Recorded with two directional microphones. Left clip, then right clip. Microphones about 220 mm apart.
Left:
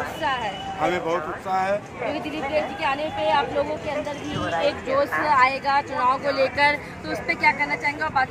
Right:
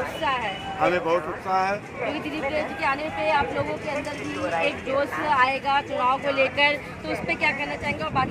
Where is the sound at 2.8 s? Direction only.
5° right (ahead or behind).